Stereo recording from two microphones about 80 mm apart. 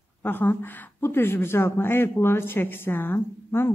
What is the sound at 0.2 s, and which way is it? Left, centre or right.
Speech, left.